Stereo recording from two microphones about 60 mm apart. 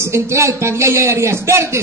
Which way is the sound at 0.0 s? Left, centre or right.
Right.